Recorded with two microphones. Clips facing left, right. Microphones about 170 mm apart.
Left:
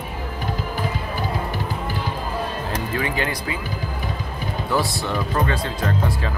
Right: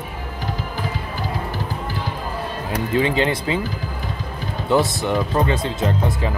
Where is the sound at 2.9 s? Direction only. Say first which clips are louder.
Right 8 dB; 20° right (ahead or behind).